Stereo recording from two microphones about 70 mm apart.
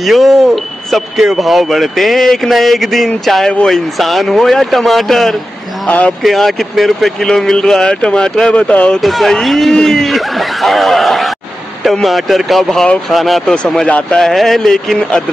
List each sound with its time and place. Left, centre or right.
0.0 s speech: centre
5.9 s speech: centre
6.2 s speech: centre
9.0 s speech: centre